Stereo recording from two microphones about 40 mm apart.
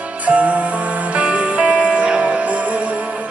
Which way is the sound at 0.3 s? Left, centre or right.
Right.